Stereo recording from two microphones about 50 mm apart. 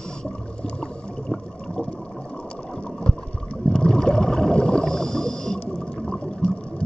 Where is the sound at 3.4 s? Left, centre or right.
Centre.